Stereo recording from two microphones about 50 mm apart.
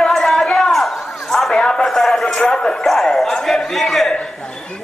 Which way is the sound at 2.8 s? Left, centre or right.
Centre.